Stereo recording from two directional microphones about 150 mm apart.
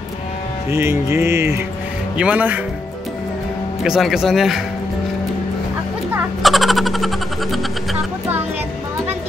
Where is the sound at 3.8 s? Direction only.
5° right (ahead or behind).